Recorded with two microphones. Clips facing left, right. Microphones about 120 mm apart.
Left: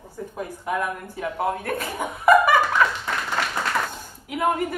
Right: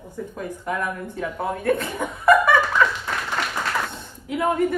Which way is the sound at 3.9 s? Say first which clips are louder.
Right 3 dB; 5° left (ahead or behind).